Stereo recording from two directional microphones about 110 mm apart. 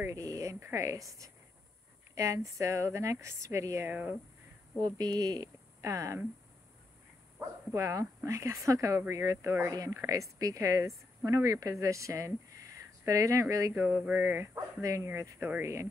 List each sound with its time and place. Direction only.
0.0 s speech: 30° right (ahead or behind)
3.9 s speech: 15° right (ahead or behind)
4.7 s a woman's voice: 35° right (ahead or behind)
7.3 s a woman's voice: 30° right (ahead or behind)
13.9 s speech: 15° right (ahead or behind)